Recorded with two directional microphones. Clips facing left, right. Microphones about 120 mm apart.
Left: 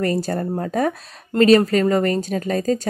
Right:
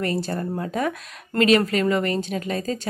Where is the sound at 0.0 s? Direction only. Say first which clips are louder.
Left 4 dB; 40° left (ahead or behind).